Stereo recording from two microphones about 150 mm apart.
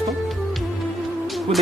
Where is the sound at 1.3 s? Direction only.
Centre (ahead or behind).